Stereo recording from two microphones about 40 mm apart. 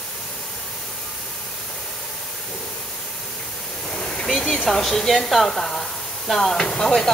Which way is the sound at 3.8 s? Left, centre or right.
Centre.